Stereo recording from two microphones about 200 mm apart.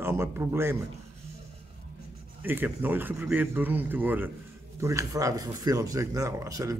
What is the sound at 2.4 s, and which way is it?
Speech, 10° right (ahead or behind).